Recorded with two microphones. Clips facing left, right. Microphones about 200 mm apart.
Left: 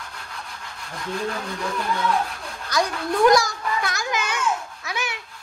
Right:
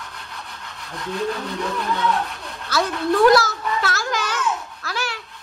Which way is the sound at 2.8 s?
Centre (ahead or behind).